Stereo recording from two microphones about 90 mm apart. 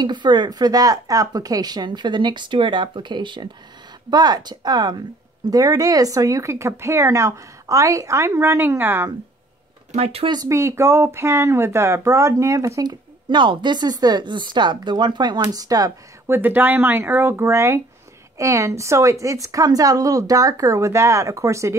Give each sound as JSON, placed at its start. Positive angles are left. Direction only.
{"t": 0.0, "sound": "speech", "side_deg": -55}
{"t": 4.1, "sound": "speech", "side_deg": -50}
{"t": 5.5, "sound": "speech", "side_deg": -40}
{"t": 10.5, "sound": "speech", "side_deg": -35}
{"t": 12.8, "sound": "speech", "side_deg": -60}
{"t": 16.3, "sound": "speech", "side_deg": -20}